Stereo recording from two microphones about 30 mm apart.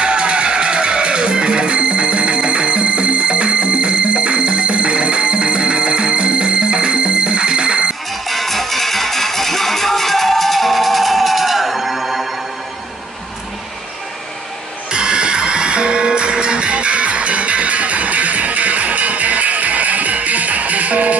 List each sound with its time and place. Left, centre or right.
0.0 s music: right
8.3 s music: centre
14.9 s music: right